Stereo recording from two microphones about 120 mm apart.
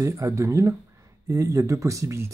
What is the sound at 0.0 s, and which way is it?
Speech, 25° right (ahead or behind).